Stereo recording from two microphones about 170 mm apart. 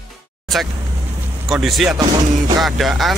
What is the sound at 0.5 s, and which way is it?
Vehicle, centre (ahead or behind).